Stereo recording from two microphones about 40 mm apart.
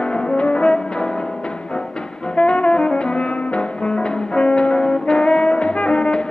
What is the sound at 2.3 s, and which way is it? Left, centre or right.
Music, left.